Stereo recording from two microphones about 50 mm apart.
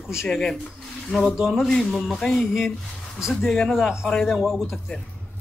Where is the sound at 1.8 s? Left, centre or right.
Centre.